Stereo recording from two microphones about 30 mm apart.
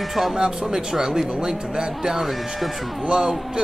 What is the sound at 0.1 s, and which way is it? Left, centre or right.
Speech, centre.